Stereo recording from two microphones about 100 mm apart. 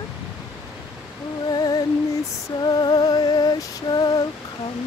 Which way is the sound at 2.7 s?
45° left (ahead or behind).